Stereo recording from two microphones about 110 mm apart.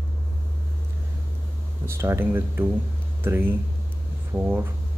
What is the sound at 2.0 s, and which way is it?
Speech, 25° right (ahead or behind).